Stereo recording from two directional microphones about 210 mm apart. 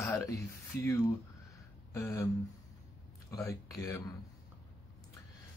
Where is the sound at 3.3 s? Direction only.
15° left (ahead or behind).